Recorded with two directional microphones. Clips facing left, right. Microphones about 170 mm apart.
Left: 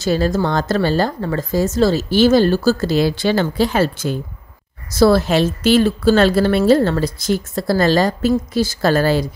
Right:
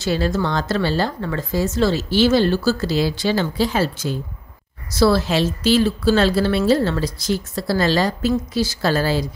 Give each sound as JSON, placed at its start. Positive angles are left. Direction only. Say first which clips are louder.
{"t": 0.0, "sound": "a woman's voice", "louder": "left 3 dB", "side_deg": 45}